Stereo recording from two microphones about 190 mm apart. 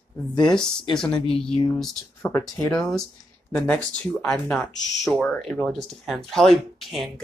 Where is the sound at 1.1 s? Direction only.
30° left (ahead or behind).